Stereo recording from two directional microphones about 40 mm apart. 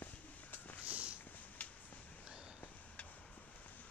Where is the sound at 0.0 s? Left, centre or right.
Left.